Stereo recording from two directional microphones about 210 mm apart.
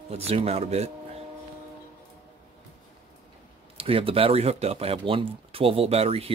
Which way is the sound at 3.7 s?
25° right (ahead or behind).